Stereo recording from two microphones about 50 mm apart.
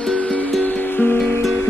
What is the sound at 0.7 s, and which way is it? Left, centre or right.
Music, left.